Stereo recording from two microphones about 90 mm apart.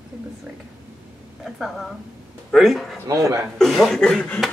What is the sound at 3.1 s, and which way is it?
Speech, 35° right (ahead or behind).